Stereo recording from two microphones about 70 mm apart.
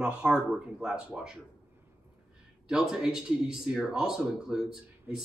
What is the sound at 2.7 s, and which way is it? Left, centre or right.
Speech, centre.